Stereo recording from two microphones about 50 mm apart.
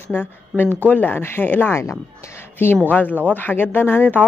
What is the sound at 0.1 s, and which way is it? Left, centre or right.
Speech, left.